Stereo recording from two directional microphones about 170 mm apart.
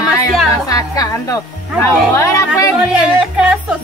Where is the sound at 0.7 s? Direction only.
20° left (ahead or behind).